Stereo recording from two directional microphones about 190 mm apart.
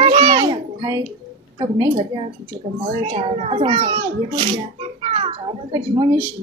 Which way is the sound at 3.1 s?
30° right (ahead or behind).